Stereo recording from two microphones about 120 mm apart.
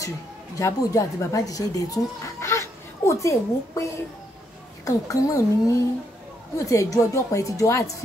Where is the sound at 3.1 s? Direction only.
25° left (ahead or behind).